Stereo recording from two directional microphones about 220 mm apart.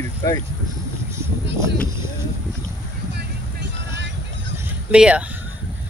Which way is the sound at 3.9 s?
55° right (ahead or behind).